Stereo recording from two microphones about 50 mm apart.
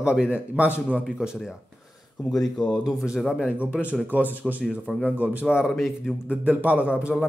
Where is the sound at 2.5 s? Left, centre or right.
Left.